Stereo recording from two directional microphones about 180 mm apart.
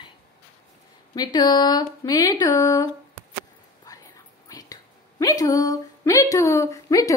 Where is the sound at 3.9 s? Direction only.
20° left (ahead or behind).